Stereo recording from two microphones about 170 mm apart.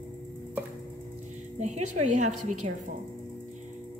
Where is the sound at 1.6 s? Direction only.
45° right (ahead or behind).